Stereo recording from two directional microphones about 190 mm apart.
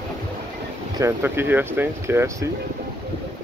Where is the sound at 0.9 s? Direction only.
15° right (ahead or behind).